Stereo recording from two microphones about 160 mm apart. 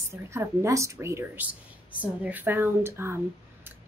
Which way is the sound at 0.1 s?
15° right (ahead or behind).